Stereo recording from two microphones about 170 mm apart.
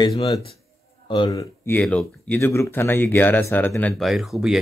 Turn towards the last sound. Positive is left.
turn(degrees=0)  # may be behind; listen again after turning